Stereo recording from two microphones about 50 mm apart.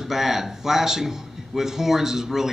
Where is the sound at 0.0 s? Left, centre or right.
Centre.